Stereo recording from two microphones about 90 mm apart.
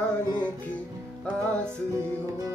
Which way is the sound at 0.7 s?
15° left (ahead or behind).